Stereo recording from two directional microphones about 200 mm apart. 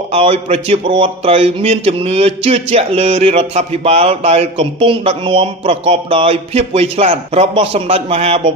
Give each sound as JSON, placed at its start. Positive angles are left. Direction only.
{"t": 0.1, "sound": "speech", "side_deg": -30}